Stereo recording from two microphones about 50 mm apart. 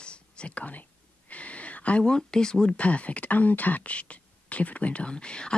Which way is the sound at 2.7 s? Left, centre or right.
Left.